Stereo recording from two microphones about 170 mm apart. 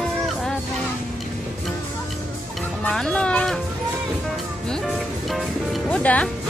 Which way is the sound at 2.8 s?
5° left (ahead or behind).